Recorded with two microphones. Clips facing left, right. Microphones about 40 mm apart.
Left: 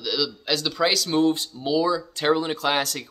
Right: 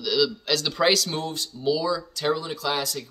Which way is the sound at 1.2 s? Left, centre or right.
Left.